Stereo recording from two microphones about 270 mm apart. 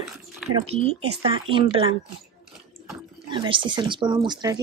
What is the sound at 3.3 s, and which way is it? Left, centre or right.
Speech, centre.